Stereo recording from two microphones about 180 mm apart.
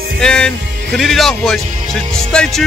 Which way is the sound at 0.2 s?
5° left (ahead or behind).